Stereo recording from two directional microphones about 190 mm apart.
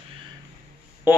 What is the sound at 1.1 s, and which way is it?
Speech, 10° right (ahead or behind).